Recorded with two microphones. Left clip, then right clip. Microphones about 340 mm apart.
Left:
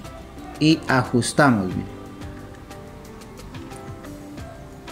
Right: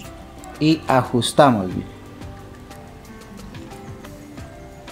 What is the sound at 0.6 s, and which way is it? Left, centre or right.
Speech, centre.